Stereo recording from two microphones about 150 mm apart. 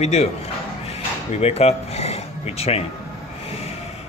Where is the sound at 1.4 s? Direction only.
45° left (ahead or behind).